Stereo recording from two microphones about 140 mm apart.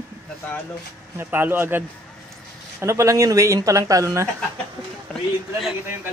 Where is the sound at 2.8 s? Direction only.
20° right (ahead or behind).